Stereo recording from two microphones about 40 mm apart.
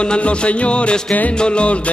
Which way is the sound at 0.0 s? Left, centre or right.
Left.